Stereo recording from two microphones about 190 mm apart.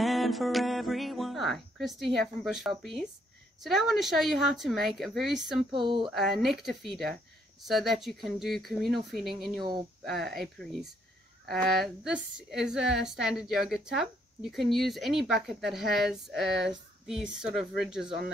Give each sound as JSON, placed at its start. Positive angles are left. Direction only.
{"t": 0.0, "sound": "a sound", "side_deg": 0}
{"t": 2.1, "sound": "a woman's voice", "side_deg": 0}
{"t": 5.7, "sound": "speech", "side_deg": -25}
{"t": 6.0, "sound": "a woman's voice", "side_deg": 0}